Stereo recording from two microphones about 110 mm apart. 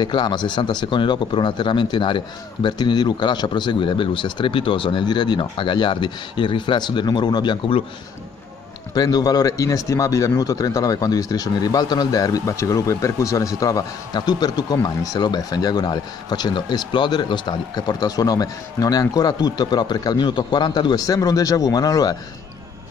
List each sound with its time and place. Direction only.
0.0 s a man's voice: 45° left (ahead or behind)
8.9 s speech: 35° left (ahead or behind)